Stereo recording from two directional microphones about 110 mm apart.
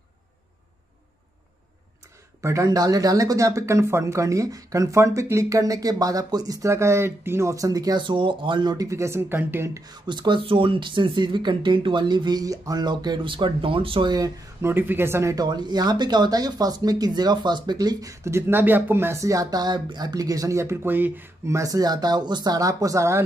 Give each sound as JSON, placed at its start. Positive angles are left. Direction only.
{"t": 2.4, "sound": "speech", "side_deg": -30}
{"t": 9.8, "sound": "speech", "side_deg": -40}
{"t": 14.6, "sound": "speech", "side_deg": -20}
{"t": 15.3, "sound": "speech", "side_deg": -40}